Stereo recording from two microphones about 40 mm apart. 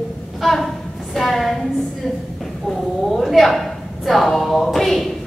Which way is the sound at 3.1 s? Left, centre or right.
Centre.